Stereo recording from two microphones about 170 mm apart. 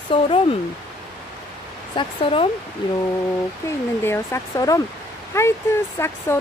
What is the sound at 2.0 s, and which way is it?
Speech, 30° left (ahead or behind).